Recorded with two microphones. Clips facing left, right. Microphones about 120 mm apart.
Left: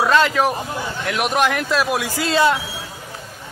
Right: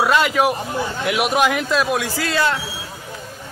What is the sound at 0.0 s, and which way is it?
A man's voice, 10° right (ahead or behind).